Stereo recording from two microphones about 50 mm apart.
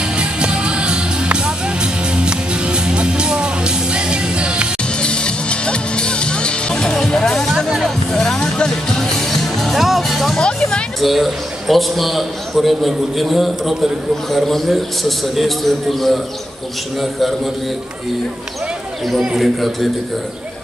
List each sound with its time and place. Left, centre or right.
0.0 s music: centre
4.9 s music: centre
10.4 s music: centre
11.0 s a man's voice: centre
19.3 s a man's voice: centre